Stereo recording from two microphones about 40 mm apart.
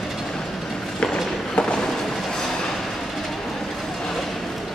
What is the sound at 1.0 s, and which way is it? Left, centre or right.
Run, left.